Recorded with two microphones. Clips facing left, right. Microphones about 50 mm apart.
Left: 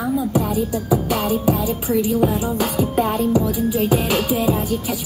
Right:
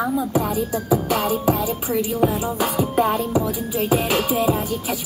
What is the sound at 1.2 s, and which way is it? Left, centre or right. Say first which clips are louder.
Music: left 1 dB; centre.